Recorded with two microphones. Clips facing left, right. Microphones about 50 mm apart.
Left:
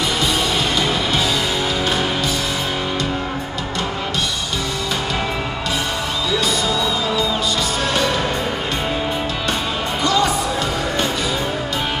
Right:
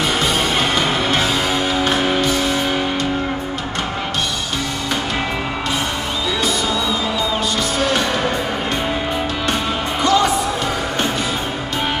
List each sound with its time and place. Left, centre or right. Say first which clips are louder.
0.7 s music: right 2 dB; right
10.0 s music: right 2 dB; right